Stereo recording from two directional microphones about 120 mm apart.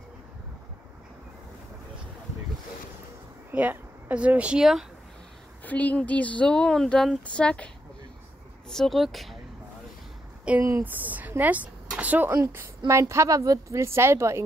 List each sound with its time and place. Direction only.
3.5 s speech: 10° right (ahead or behind)
5.6 s speech: 15° left (ahead or behind)
10.5 s speech: 10° right (ahead or behind)
12.4 s a woman's voice: 25° right (ahead or behind)